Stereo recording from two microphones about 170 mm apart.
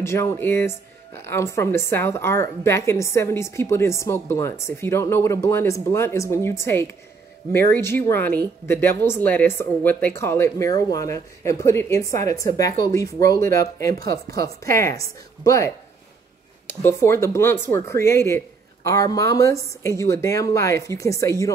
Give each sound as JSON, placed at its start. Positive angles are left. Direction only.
{"t": 0.0, "sound": "a woman's voice", "side_deg": 15}